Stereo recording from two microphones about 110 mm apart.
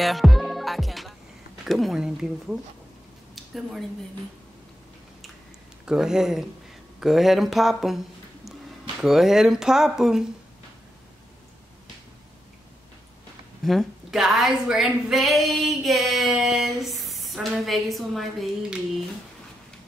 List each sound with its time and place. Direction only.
0.0 s music: centre (ahead or behind)
1.7 s a woman's voice: centre (ahead or behind)
3.3 s a sound: centre (ahead or behind)
5.9 s a woman's voice: 5° right (ahead or behind)
9.0 s a woman's voice: 5° right (ahead or behind)
13.7 s a woman's voice: centre (ahead or behind)